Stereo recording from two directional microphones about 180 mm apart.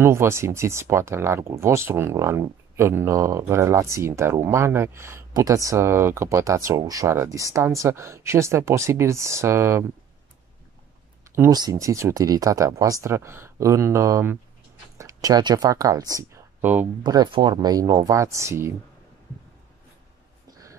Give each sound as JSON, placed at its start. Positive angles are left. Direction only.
{"t": 0.0, "sound": "speech", "side_deg": -15}
{"t": 11.3, "sound": "speech", "side_deg": -20}
{"t": 17.0, "sound": "speech", "side_deg": -25}